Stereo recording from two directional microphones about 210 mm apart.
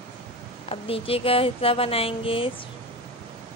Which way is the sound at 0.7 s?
25° left (ahead or behind).